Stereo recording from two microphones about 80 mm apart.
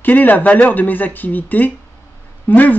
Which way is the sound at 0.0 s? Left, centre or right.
Left.